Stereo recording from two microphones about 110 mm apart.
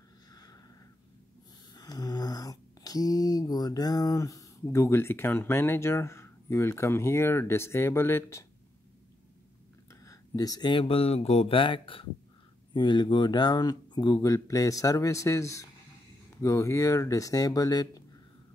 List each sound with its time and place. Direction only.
0.3 s a sound: 35° left (ahead or behind)
1.7 s speech: 35° left (ahead or behind)
9.8 s speech: 30° left (ahead or behind)